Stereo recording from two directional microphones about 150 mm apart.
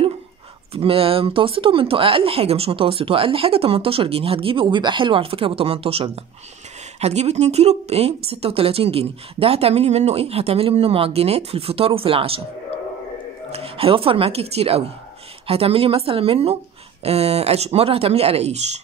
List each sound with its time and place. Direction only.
0.7 s speech: 40° right (ahead or behind)
13.5 s speech: 40° right (ahead or behind)